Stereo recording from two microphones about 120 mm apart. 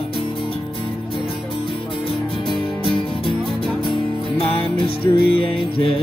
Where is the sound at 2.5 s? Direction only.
45° left (ahead or behind).